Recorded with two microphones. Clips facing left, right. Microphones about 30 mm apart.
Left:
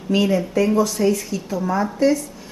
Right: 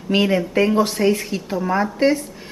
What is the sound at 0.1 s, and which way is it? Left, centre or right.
A woman's voice, right.